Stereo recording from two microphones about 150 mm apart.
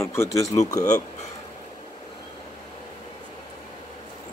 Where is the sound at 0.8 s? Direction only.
55° left (ahead or behind).